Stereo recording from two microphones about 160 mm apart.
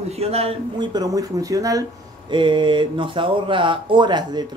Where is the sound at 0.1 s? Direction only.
40° right (ahead or behind).